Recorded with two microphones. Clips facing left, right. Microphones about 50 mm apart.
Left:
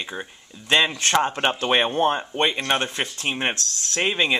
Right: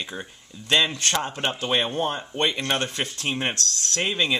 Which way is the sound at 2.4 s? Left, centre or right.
Centre.